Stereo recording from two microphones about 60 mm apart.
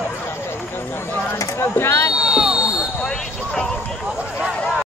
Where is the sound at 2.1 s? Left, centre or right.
Centre.